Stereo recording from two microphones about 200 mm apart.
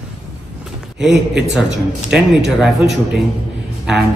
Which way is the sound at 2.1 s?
5° right (ahead or behind).